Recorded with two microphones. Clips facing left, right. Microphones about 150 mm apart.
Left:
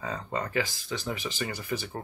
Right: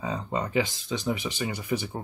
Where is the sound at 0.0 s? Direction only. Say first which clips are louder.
Right 3 dB; 15° right (ahead or behind).